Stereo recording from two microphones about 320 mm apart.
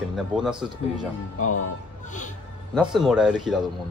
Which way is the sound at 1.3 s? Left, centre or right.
Left.